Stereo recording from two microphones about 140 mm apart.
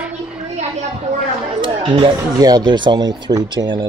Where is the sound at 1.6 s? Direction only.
35° right (ahead or behind).